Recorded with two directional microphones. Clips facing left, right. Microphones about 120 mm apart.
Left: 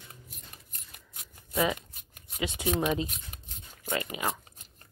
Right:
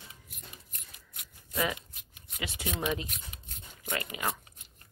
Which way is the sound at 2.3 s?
30° left (ahead or behind).